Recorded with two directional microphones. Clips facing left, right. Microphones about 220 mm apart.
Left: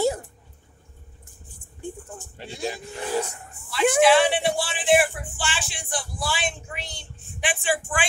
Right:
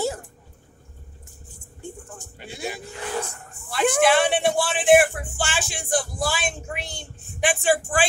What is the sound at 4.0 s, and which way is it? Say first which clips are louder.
Music: left 2 dB; 55° right (ahead or behind).